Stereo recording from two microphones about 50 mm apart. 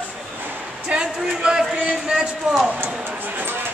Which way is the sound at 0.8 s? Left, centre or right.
Centre.